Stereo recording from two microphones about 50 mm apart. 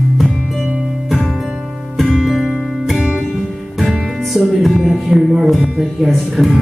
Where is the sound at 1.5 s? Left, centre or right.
Centre.